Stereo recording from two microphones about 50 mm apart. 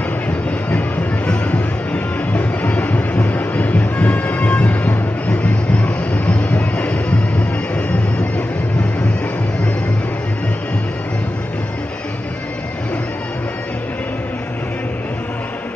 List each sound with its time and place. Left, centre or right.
2.9 s a sound: left
4.6 s music: left
5.9 s vehicle: left